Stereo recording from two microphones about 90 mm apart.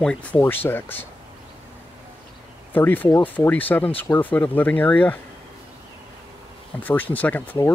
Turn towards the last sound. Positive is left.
turn(degrees=20)  # may be behind; listen again after turning